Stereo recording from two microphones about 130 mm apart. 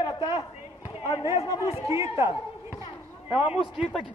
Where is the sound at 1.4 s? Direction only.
20° right (ahead or behind).